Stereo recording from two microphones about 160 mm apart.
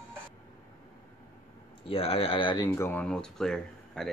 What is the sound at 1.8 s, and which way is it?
Speech, 35° left (ahead or behind).